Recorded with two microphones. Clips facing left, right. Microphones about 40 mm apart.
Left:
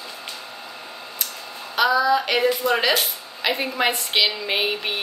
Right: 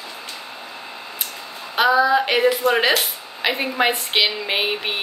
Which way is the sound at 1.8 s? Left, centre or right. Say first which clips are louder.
Right 2 dB; right.